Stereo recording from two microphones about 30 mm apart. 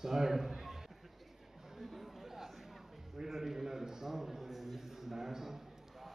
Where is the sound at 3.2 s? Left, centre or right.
Centre.